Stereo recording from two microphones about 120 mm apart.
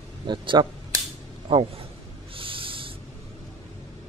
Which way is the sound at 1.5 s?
50° right (ahead or behind).